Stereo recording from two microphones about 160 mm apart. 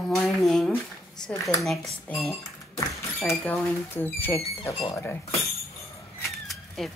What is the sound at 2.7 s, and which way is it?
Speech, 15° left (ahead or behind).